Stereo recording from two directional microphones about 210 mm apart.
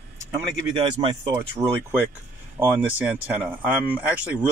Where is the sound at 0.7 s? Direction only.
25° right (ahead or behind).